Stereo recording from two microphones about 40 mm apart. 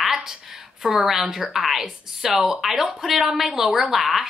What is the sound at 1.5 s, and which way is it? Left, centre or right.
A woman's voice, centre.